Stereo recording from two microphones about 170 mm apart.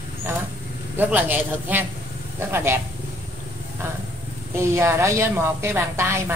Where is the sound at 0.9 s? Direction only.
10° right (ahead or behind).